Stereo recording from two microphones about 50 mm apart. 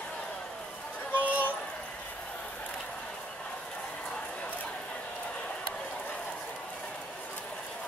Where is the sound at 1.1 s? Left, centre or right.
Right.